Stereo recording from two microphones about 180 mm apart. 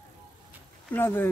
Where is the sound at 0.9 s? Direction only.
10° left (ahead or behind).